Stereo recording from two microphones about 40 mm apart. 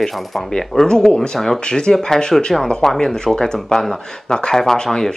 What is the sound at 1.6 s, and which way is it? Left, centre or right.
Speech, centre.